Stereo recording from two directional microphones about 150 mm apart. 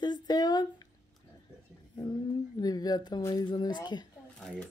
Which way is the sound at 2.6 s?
25° left (ahead or behind).